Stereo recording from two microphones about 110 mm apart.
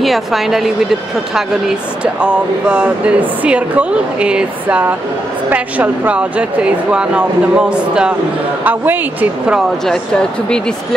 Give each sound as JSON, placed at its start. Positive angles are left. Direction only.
{"t": 0.0, "sound": "speech", "side_deg": 0}
{"t": 2.2, "sound": "speech", "side_deg": -10}